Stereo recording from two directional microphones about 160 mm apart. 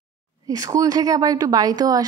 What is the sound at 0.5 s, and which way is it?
A woman's voice, 20° right (ahead or behind).